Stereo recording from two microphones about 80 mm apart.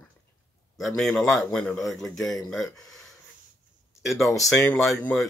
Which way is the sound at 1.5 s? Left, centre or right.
Centre.